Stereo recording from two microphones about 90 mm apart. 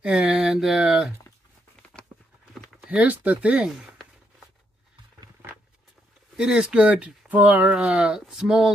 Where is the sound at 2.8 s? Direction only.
15° right (ahead or behind).